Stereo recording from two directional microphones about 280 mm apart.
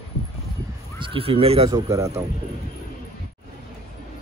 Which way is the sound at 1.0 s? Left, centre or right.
Centre.